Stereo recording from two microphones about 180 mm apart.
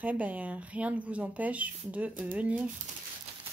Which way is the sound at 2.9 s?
40° right (ahead or behind).